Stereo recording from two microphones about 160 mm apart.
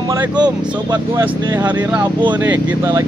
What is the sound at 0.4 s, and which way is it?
Speech, 25° right (ahead or behind).